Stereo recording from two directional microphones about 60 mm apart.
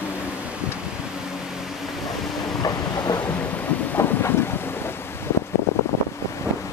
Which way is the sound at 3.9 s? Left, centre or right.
Left.